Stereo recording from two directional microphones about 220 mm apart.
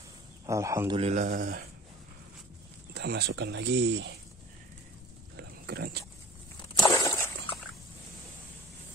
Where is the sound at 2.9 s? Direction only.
50° right (ahead or behind).